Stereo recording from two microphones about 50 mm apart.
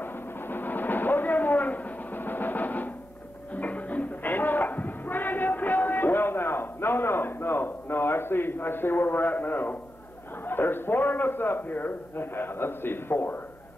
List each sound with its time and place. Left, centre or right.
0.0 s a sound: left
3.5 s music: left
10.5 s a man's voice: left